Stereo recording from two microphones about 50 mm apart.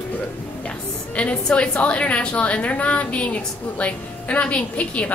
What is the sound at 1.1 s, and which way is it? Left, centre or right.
A woman's voice, left.